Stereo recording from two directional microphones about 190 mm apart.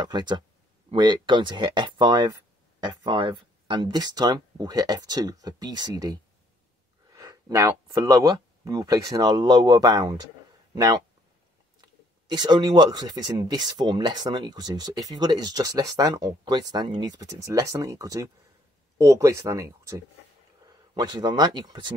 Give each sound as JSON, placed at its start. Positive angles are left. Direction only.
{"t": 0.0, "sound": "speech", "side_deg": -25}